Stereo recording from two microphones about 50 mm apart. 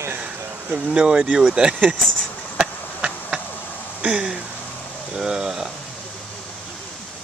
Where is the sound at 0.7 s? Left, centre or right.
Centre.